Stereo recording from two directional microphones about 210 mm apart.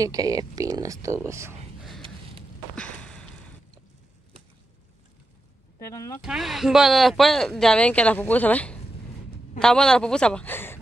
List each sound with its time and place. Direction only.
0.0 s speech: 15° right (ahead or behind)
2.7 s a sound: 5° left (ahead or behind)
5.8 s speech: 15° left (ahead or behind)
6.2 s speech: centre (ahead or behind)